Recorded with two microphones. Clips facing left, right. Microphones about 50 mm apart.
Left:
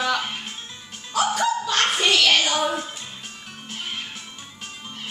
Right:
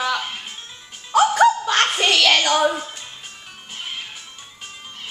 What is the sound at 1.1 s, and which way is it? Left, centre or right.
Music, right.